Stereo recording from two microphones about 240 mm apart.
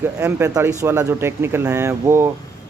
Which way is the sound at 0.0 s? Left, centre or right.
Centre.